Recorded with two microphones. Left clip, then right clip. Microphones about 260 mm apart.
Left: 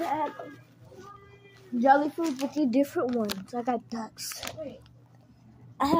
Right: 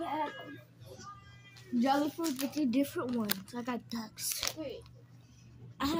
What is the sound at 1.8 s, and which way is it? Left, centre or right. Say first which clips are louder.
Speech: left 9 dB; centre.